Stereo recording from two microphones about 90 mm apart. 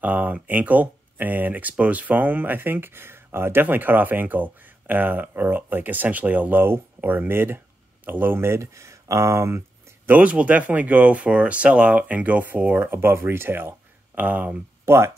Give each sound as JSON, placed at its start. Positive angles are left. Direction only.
{"t": 0.0, "sound": "speech", "side_deg": -20}
{"t": 10.0, "sound": "speech", "side_deg": -15}
{"t": 14.9, "sound": "speech", "side_deg": -30}